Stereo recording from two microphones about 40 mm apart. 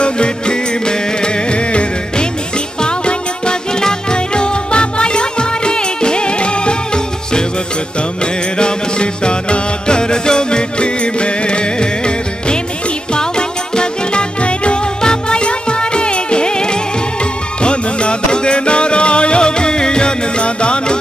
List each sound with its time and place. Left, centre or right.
0.0 s music: left
8.5 s music: left